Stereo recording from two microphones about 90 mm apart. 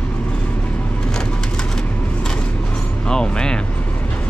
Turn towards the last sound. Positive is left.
turn(degrees=10)  # may be behind; listen again after turning